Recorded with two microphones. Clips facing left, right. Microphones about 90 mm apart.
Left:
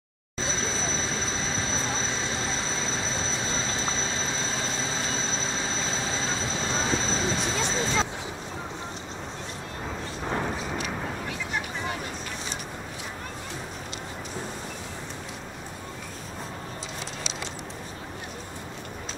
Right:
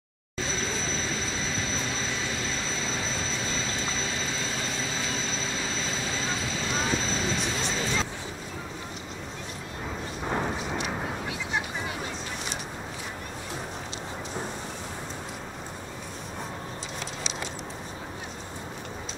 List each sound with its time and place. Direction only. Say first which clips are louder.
2.7 s vehicle: left 1 dB; 30° left (ahead or behind)
7.6 s music: left 2 dB; 30° left (ahead or behind)
10.2 s a sound: even; 5° right (ahead or behind)